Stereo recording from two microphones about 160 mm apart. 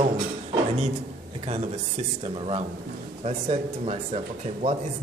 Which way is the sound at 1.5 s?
40° right (ahead or behind).